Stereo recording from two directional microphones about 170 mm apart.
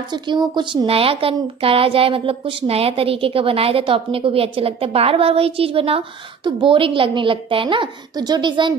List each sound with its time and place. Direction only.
0.1 s speech: 25° right (ahead or behind)